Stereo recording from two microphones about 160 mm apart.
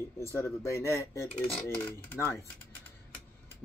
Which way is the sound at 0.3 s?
20° left (ahead or behind).